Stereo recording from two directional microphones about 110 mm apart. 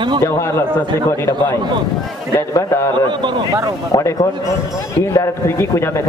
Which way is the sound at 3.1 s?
45° right (ahead or behind).